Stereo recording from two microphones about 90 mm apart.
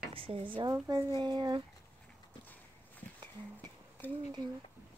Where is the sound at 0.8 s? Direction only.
45° right (ahead or behind).